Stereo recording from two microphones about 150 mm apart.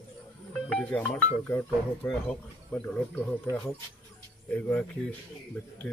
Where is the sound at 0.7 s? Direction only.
10° left (ahead or behind).